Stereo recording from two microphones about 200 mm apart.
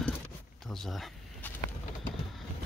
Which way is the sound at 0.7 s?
Centre (ahead or behind).